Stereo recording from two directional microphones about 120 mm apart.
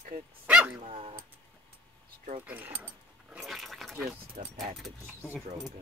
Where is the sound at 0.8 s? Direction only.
50° right (ahead or behind).